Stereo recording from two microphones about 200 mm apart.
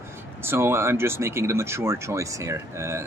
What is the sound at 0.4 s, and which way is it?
Speech, 10° right (ahead or behind).